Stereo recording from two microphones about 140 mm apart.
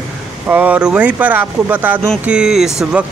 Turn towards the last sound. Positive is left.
turn(degrees=-5)  # may be behind; listen again after turning